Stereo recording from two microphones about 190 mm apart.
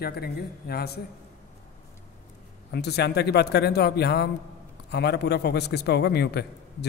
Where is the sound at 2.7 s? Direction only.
60° left (ahead or behind).